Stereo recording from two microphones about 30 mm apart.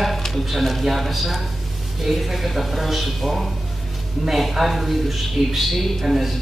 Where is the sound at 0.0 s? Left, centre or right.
Centre.